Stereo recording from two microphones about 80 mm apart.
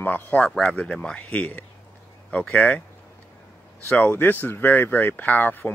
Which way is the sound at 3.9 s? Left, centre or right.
Left.